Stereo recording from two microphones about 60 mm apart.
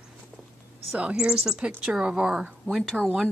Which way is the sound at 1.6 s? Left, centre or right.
Right.